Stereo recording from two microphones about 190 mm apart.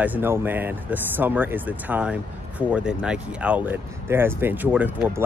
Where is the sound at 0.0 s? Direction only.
10° right (ahead or behind).